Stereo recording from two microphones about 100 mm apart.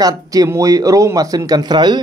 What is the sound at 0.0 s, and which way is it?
A man's voice, 40° right (ahead or behind).